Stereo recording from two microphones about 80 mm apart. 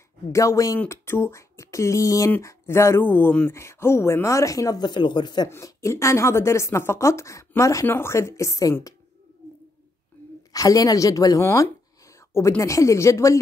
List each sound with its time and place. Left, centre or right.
0.3 s speech: left
0.8 s a woman's voice: left
2.4 s speech: left
5.5 s a woman's voice: left
7.8 s a woman's voice: left
10.5 s a woman's voice: left